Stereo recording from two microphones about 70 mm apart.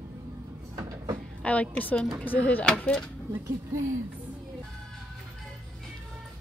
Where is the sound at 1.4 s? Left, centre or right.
Left.